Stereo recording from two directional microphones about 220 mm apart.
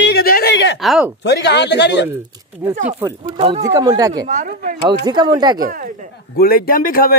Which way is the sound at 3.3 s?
25° right (ahead or behind).